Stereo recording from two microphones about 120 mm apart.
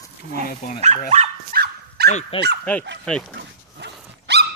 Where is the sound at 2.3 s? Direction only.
50° left (ahead or behind).